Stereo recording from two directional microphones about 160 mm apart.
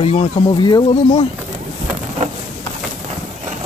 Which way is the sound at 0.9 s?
40° left (ahead or behind).